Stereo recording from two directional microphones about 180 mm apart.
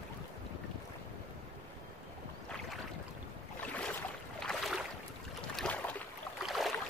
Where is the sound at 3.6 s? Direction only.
10° left (ahead or behind).